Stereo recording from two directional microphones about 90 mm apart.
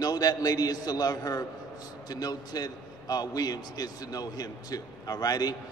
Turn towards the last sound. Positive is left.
turn(degrees=45)  # may be behind; listen again after turning